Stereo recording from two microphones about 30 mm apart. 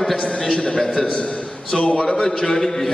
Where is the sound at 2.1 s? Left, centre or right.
Left.